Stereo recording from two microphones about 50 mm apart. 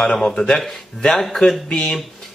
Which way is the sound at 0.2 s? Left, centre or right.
Centre.